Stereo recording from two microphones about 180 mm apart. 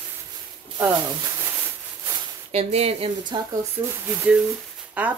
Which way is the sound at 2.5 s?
35° right (ahead or behind).